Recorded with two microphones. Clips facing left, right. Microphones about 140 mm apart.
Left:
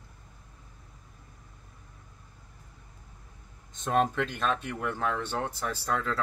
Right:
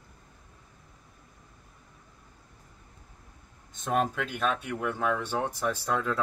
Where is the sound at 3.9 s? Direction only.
5° right (ahead or behind).